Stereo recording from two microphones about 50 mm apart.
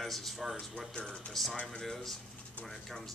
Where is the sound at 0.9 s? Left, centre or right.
Left.